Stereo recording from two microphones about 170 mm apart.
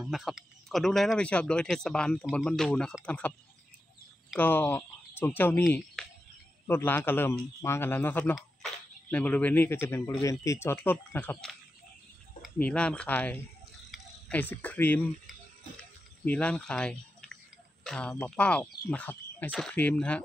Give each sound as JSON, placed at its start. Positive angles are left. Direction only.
{"t": 0.0, "sound": "speech", "side_deg": 0}
{"t": 4.4, "sound": "speech", "side_deg": 10}
{"t": 12.5, "sound": "speech", "side_deg": 10}
{"t": 16.3, "sound": "speech", "side_deg": 5}